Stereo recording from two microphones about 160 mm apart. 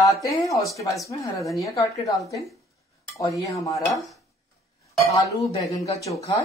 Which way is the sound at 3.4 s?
20° left (ahead or behind).